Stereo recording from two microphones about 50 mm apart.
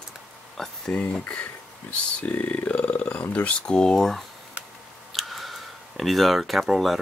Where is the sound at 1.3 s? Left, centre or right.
Left.